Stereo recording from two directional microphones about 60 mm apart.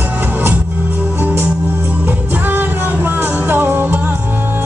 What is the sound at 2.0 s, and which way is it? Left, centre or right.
Music, right.